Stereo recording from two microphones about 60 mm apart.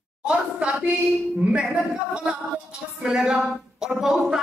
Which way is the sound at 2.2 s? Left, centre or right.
Centre.